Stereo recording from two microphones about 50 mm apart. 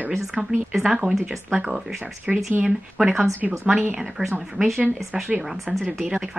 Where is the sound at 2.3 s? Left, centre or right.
Centre.